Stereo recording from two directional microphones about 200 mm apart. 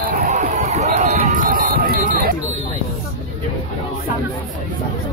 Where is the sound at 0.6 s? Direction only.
35° right (ahead or behind).